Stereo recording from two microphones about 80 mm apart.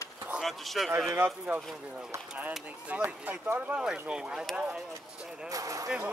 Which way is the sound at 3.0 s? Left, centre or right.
Right.